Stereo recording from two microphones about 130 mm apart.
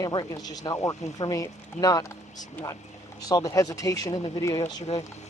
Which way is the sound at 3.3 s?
25° left (ahead or behind).